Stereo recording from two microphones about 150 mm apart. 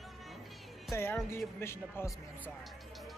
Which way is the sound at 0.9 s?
15° left (ahead or behind).